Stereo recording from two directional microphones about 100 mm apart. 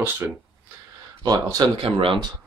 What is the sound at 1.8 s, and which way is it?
Speech, 70° right (ahead or behind).